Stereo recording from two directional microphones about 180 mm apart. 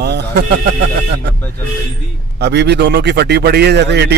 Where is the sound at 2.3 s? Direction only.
70° right (ahead or behind).